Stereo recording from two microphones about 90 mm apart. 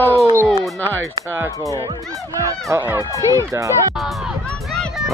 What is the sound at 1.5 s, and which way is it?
Speech, 40° left (ahead or behind).